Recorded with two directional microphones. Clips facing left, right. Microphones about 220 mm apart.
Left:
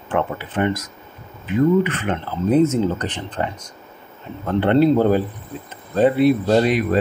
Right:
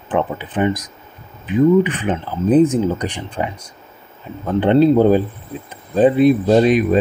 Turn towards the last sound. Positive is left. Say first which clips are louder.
# right 4 dB
turn(degrees=-20)  # may be behind; listen again after turning